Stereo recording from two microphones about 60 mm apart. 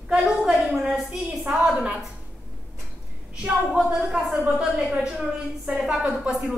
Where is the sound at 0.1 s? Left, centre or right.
Centre.